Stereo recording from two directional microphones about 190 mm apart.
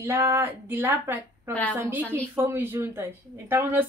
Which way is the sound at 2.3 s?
10° right (ahead or behind).